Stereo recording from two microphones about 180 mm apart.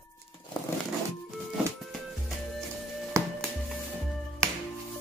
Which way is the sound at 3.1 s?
15° right (ahead or behind).